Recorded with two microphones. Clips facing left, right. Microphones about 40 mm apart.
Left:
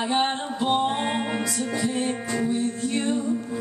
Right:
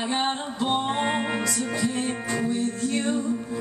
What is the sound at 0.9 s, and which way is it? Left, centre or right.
Music, centre.